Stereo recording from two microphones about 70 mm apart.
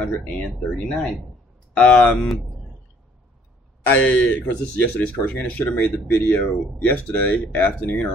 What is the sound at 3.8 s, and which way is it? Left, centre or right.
Speech, left.